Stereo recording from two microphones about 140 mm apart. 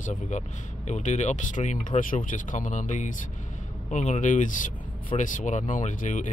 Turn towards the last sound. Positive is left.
turn(degrees=65)  # may be behind; listen again after turning